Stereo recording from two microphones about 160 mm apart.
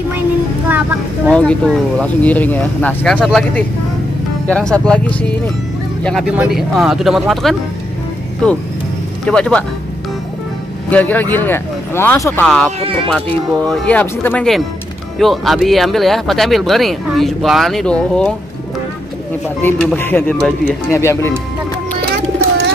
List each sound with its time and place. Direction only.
0.7 s speech: 10° right (ahead or behind)
1.3 s speech: 5° left (ahead or behind)
3.2 s speech: 5° right (ahead or behind)
4.5 s speech: 5° left (ahead or behind)
9.2 s speech: 5° left (ahead or behind)
10.9 s speech: 10° left (ahead or behind)
12.8 s speech: 35° right (ahead or behind)
13.7 s speech: 10° left (ahead or behind)
19.6 s speech: 10° left (ahead or behind)
20.9 s speech: 15° left (ahead or behind)